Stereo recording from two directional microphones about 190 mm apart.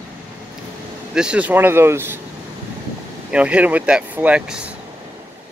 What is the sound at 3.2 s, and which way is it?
Speech, 5° right (ahead or behind).